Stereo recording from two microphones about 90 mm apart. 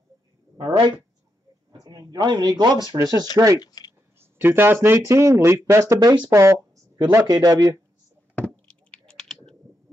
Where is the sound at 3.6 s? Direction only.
50° left (ahead or behind).